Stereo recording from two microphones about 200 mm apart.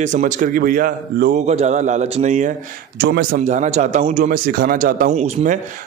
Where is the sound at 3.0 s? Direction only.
55° right (ahead or behind).